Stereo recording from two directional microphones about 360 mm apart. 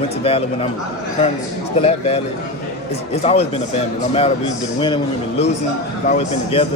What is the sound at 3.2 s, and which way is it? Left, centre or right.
Speech, centre.